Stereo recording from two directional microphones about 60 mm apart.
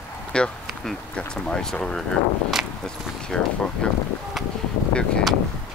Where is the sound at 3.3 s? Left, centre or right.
Centre.